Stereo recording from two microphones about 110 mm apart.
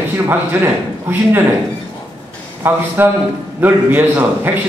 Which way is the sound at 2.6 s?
20° right (ahead or behind).